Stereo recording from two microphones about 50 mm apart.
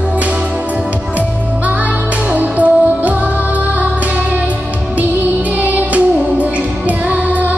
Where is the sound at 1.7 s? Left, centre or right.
Right.